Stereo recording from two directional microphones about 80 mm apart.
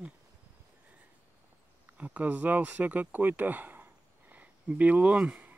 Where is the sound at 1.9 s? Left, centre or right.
Centre.